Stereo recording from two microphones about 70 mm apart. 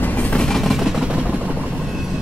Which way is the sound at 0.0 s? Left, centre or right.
Left.